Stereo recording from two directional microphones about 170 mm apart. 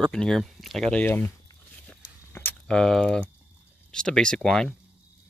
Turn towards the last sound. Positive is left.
turn(degrees=0)  # may be behind; listen again after turning